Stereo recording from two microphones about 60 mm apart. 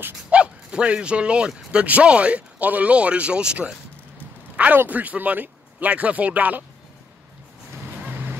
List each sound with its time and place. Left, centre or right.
0.3 s speech: centre
4.7 s speech: right
8.0 s vehicle: right